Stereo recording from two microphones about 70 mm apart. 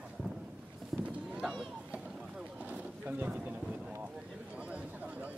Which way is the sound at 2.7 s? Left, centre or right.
Right.